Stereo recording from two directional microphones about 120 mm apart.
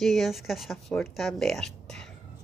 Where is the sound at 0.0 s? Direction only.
Centre (ahead or behind).